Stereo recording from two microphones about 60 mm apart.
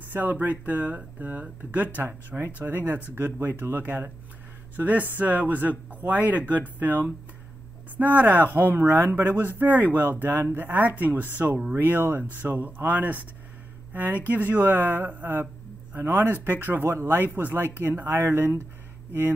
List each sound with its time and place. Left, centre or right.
0.1 s speech: right
2.0 s speech: right
14.2 s speech: right